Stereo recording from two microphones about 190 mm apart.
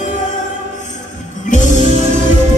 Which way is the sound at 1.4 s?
40° left (ahead or behind).